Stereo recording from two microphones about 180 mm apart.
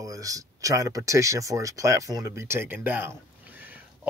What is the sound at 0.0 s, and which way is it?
Speech, 20° right (ahead or behind).